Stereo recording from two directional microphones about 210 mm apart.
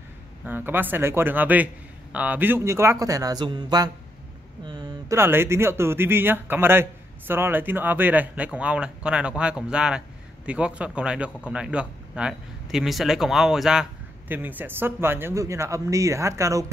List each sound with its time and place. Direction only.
0.5 s speech: 10° right (ahead or behind)